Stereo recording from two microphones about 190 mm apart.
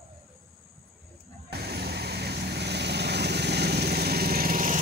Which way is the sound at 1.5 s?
60° right (ahead or behind).